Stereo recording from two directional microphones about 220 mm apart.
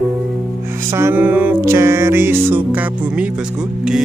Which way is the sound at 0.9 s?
10° right (ahead or behind).